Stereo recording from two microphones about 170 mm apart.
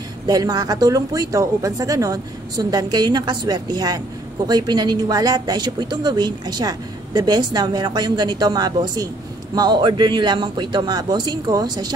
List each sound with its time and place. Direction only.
0.3 s speech: 25° right (ahead or behind)